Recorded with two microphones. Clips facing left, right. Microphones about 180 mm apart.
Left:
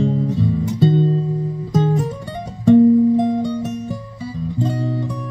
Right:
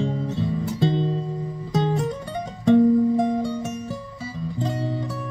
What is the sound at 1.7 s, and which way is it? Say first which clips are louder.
Guitar: left 4 dB; centre (ahead or behind).